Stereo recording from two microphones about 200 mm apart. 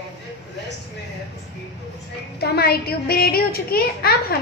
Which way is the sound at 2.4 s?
50° left (ahead or behind).